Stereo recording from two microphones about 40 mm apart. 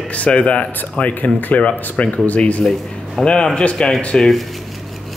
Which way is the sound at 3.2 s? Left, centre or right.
Centre.